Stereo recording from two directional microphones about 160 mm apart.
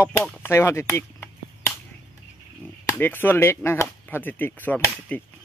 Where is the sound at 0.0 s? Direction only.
10° left (ahead or behind).